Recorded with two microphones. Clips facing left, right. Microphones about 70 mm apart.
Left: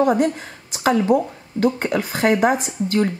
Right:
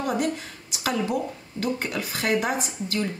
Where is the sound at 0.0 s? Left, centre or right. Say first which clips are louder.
Left 8 dB; left.